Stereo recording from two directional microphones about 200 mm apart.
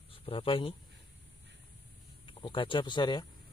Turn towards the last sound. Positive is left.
turn(degrees=20)  # may be behind; listen again after turning